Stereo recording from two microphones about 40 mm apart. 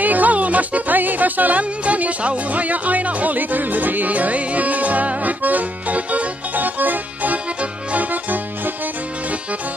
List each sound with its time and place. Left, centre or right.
0.0 s music: right